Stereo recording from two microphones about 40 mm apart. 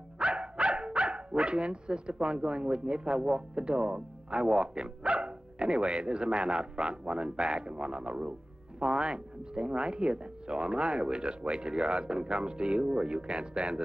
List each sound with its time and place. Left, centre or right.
0.2 s speech: right